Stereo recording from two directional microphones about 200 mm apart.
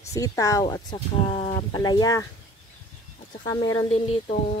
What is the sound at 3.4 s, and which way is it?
Speech, 20° left (ahead or behind).